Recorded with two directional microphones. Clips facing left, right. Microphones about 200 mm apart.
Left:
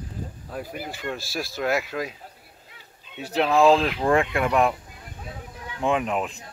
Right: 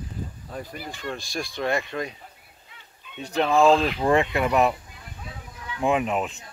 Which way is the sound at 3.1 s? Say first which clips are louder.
Even; 5° left (ahead or behind).